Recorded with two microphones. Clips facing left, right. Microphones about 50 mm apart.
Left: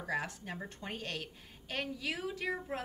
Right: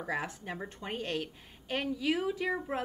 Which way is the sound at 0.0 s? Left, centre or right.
Centre.